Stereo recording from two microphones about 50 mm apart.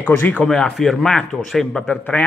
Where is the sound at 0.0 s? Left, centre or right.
Left.